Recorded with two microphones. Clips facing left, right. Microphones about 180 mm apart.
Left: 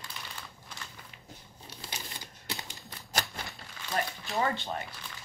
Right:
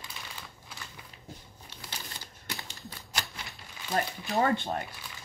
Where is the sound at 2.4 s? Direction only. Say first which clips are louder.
Left 1 dB; 20° left (ahead or behind).